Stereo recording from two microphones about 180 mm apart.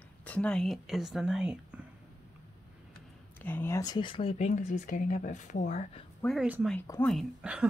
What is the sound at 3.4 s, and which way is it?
Speech, 10° left (ahead or behind).